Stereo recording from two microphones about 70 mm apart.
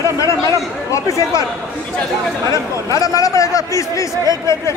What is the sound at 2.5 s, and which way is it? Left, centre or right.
A man's voice, left.